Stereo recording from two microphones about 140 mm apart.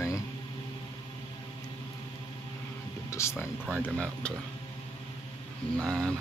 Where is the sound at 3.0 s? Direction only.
20° left (ahead or behind).